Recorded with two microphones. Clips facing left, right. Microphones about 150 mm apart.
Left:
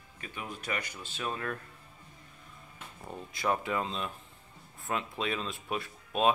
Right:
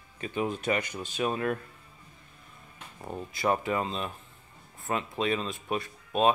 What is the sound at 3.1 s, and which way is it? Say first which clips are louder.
Speech: right 3 dB; 5° right (ahead or behind).